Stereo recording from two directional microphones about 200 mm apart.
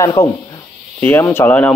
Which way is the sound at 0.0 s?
15° left (ahead or behind).